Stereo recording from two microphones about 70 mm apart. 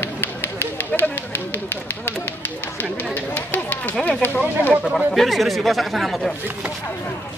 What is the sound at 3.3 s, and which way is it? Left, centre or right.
Speech, left.